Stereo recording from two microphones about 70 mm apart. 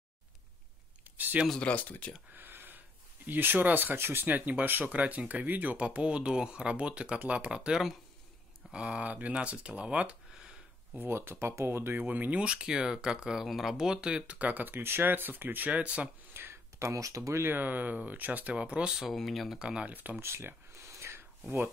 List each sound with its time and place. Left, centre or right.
1.0 s a sound: right
1.6 s speech: left
2.3 s a sound: right
3.3 s speech: right
11.0 s speech: right
12.1 s speech: right
16.3 s speech: right
17.5 s speech: right
19.0 s speech: centre
19.6 s speech: centre
19.9 s speech: right
20.2 s a sound: right